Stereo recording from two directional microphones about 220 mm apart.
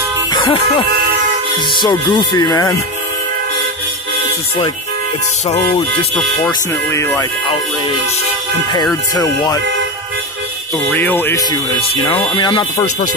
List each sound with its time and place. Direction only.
0.3 s speech: 20° left (ahead or behind)
5.5 s speech: 30° left (ahead or behind)
6.1 s speech: 10° left (ahead or behind)
9.2 s speech: 15° left (ahead or behind)
10.9 s speech: 10° left (ahead or behind)
11.9 s speech: 25° left (ahead or behind)